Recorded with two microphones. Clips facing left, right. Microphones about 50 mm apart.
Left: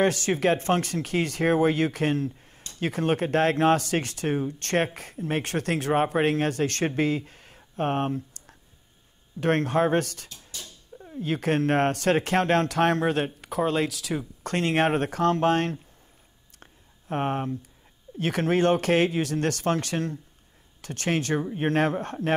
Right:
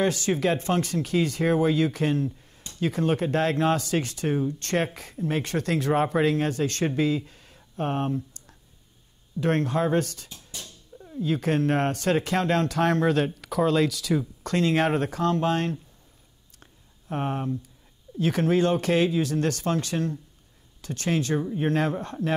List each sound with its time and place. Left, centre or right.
0.0 s speech: left
4.8 s speech: left
5.4 s speech: left
7.0 s a sound: left
9.4 s speech: left
10.6 s cat: centre
11.1 s speech: left
13.0 s speech: left
14.4 s speech: left
17.1 s speech: left